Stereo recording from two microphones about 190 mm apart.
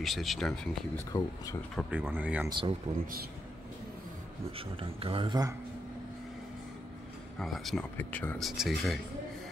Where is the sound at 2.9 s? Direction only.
35° right (ahead or behind).